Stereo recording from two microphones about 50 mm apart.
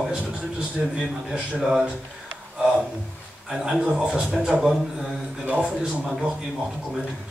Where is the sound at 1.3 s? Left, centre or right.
Centre.